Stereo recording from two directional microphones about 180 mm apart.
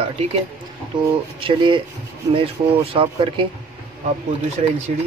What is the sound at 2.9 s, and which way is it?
Speech, 30° right (ahead or behind).